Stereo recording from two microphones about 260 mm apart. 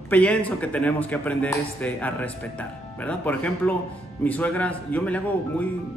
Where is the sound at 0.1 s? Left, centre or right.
Centre.